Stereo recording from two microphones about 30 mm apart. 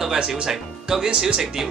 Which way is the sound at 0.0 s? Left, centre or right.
Centre.